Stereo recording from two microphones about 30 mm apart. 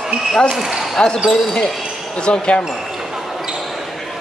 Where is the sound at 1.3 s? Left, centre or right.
Left.